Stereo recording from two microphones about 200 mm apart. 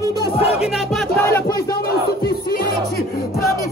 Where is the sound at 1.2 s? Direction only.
10° left (ahead or behind).